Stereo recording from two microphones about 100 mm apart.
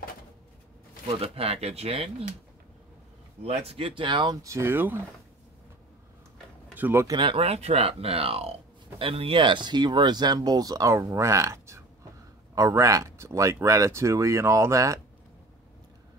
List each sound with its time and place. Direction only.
1.2 s speech: 80° right
3.4 s speech: 75° right (ahead or behind); by 4.4 s 50° right (ahead or behind)
4.4 s speech: 30° right (ahead or behind)
6.7 s speech: 20° right (ahead or behind)
7.2 s speech: 65° right (ahead or behind); by 15.0 s 30° right (ahead or behind)